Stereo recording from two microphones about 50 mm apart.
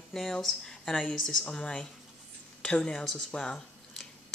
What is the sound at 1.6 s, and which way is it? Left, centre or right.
Speech, left.